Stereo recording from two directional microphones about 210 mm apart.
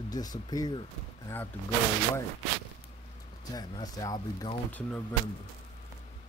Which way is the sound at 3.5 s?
20° left (ahead or behind).